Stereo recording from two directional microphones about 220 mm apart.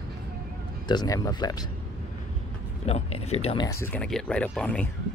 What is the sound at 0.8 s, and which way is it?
Speech, 20° left (ahead or behind).